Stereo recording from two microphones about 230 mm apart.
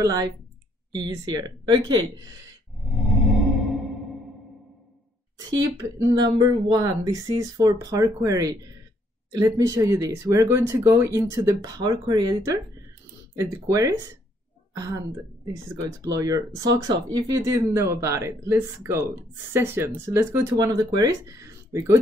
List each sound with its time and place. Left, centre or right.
0.0 s speech: centre
2.8 s a sound: centre
5.8 s a woman's voice: centre